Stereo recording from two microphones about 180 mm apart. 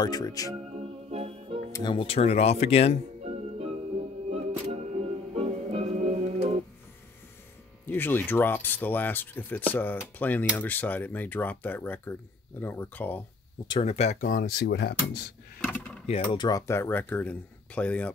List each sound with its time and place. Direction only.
0.0 s speech: 20° left (ahead or behind)
0.6 s music: 35° right (ahead or behind)
1.7 s speech: 25° left (ahead or behind)
3.3 s music: 40° right (ahead or behind)
7.8 s speech: 10° left (ahead or behind)
13.7 s speech: 35° left (ahead or behind)
14.3 s speech: 60° left (ahead or behind)
15.6 s drawer open or close: 10° left (ahead or behind)
16.1 s speech: 25° left (ahead or behind); by 18.1 s 5° left (ahead or behind)